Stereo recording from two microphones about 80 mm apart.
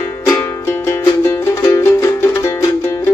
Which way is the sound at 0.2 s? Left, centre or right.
Left.